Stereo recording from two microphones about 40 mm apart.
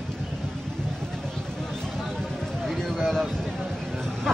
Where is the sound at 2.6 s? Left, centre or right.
Centre.